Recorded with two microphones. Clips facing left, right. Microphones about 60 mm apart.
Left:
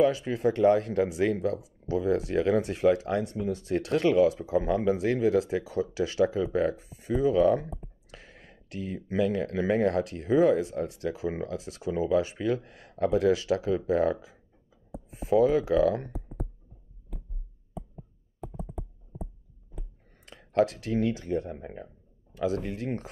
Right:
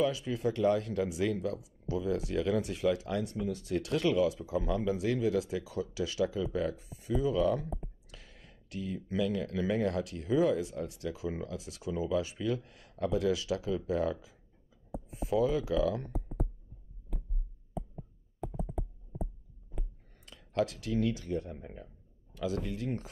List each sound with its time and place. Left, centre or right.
0.0 s speech: left
18.6 s computer keyboard: centre
20.1 s speech: left